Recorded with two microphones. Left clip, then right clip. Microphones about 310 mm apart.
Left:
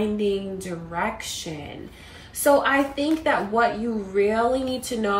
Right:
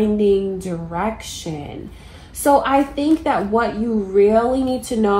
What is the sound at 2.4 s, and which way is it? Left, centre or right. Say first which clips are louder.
A woman's voice: right 4 dB; centre.